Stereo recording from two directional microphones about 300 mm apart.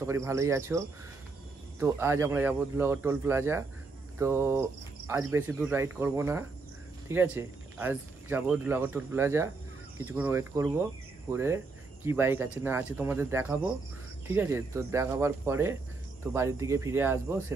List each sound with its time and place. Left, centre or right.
0.0 s speech: centre